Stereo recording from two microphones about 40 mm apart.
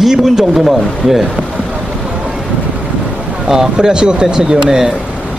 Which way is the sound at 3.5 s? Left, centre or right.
Centre.